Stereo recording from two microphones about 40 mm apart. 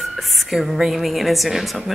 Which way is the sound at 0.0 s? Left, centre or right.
Centre.